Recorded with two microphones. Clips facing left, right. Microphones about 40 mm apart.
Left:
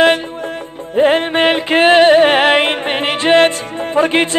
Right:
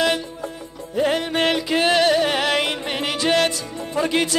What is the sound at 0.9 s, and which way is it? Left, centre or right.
Music, left.